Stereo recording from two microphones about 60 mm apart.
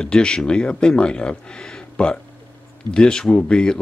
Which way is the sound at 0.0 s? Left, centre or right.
Centre.